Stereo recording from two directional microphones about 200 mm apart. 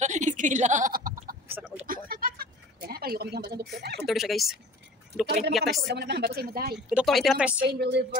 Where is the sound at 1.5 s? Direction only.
5° right (ahead or behind).